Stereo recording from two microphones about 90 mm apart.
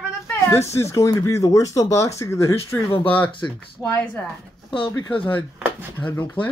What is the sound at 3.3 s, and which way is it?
Speech, 65° left (ahead or behind).